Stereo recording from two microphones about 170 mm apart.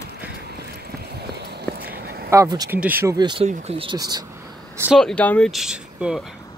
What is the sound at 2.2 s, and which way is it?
Speech, 20° right (ahead or behind).